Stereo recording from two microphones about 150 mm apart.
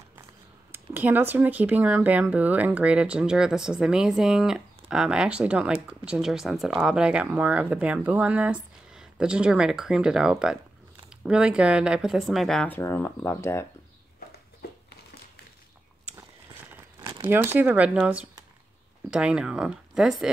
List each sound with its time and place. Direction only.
0.7 s speech: 15° right (ahead or behind); by 12.7 s 5° left (ahead or behind)
12.7 s speech: 15° left (ahead or behind)
17.3 s speech: 15° right (ahead or behind)